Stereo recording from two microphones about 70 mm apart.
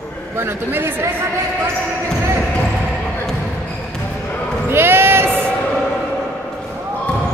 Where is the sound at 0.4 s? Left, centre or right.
Right.